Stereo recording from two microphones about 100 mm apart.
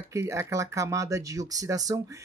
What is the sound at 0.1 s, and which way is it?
Speech, 30° right (ahead or behind).